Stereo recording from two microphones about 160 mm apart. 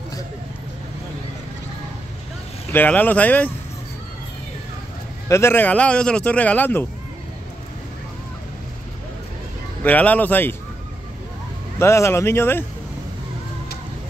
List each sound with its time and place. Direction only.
2.7 s speech: 10° left (ahead or behind)
5.3 s speech: 15° left (ahead or behind)
9.8 s speech: 10° left (ahead or behind)
11.8 s speech: 15° left (ahead or behind)